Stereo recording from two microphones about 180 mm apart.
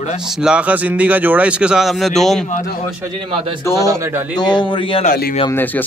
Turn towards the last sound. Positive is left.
turn(degrees=25)  # may be behind; listen again after turning